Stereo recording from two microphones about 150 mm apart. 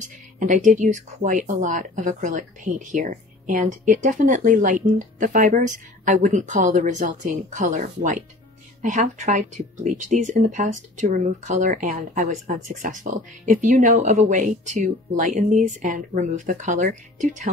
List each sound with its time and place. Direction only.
0.0 s speech: 55° right (ahead or behind)